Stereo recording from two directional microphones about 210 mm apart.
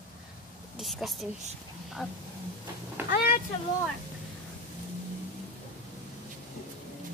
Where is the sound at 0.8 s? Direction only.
Centre (ahead or behind).